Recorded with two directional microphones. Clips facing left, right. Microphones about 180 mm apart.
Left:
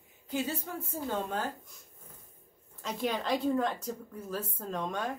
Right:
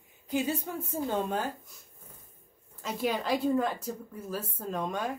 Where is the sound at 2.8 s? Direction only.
5° right (ahead or behind).